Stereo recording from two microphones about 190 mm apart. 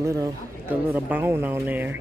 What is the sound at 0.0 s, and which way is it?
Speech, 15° right (ahead or behind).